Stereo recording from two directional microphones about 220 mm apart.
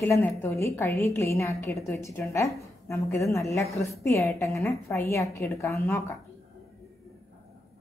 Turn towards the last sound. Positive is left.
turn(degrees=15)  # may be behind; listen again after turning